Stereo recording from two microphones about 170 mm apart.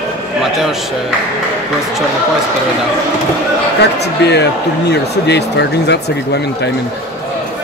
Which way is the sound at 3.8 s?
80° left.